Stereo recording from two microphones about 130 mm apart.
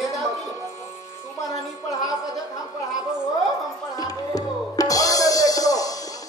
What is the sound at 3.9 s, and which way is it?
Music, 30° left (ahead or behind).